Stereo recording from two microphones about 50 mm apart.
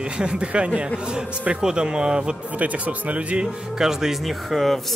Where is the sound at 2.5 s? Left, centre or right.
Right.